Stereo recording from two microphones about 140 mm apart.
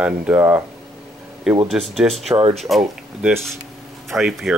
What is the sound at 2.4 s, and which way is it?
Speech, 45° right (ahead or behind).